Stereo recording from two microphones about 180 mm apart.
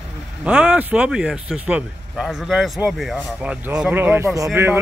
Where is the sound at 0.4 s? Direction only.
5° right (ahead or behind).